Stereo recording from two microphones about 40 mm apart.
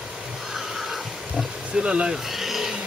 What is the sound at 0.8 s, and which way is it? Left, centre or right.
Pig, centre.